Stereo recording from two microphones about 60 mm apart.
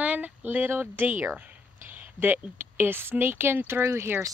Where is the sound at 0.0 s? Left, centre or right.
Right.